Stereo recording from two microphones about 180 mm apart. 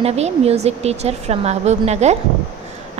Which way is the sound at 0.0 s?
35° right (ahead or behind).